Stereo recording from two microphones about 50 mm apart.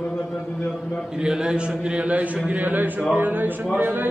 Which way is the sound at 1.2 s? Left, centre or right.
Centre.